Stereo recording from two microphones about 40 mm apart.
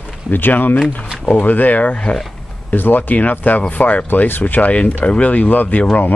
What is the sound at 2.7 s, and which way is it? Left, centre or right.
Speech, left.